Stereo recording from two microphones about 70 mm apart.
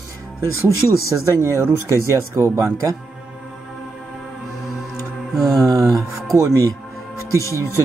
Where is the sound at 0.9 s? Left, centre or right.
Right.